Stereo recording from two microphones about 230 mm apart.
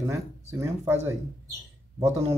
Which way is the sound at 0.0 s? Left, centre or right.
Centre.